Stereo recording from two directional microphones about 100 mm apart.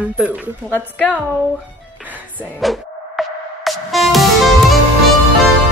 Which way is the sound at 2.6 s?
Centre (ahead or behind).